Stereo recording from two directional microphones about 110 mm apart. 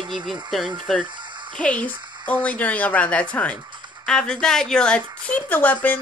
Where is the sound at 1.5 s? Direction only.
10° left (ahead or behind).